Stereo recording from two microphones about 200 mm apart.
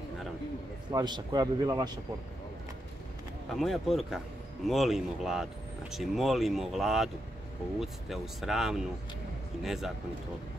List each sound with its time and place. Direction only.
0.9 s a man's voice: 20° right (ahead or behind)
3.4 s speech: centre (ahead or behind)